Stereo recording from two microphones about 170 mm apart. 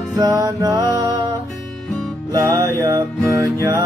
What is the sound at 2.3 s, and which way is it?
Music, 20° right (ahead or behind).